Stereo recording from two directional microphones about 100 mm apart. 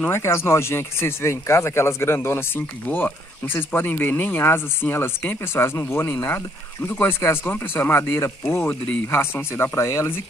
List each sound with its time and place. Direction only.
0.0 s speech: 25° left (ahead or behind)